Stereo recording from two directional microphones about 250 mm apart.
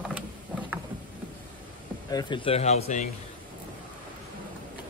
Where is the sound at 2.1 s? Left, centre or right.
Centre.